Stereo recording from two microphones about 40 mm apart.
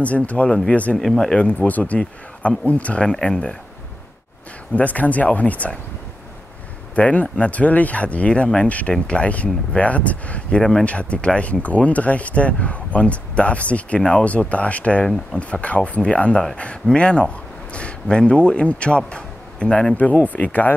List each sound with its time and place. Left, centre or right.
0.0 s speech: left
0.9 s speech: centre
1.7 s speech: left
3.1 s speech: centre
4.7 s speech: left
7.0 s a man's voice: left
10.6 s speech: centre
10.9 s a man's voice: left
20.2 s speech: left